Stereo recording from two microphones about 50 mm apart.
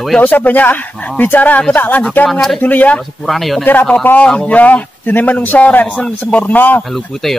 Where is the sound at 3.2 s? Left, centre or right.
Centre.